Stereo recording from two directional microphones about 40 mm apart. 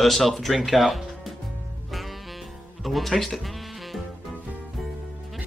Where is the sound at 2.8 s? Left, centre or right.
Centre.